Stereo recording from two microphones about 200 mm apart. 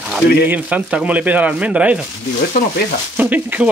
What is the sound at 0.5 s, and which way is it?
Speech, 10° right (ahead or behind).